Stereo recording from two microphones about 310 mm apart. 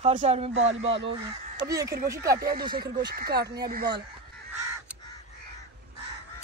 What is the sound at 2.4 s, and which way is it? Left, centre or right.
Speech, right.